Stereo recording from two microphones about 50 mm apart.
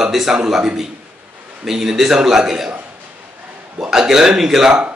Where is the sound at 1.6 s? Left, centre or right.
Centre.